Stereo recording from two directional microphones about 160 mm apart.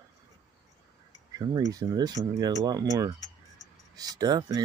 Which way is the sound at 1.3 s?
25° right (ahead or behind).